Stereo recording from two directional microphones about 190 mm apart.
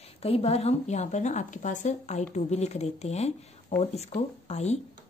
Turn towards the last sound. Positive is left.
turn(degrees=35)  # may be behind; listen again after turning